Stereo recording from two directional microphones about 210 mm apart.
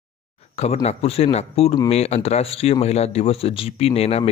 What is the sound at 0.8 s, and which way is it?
Speech, 30° left (ahead or behind).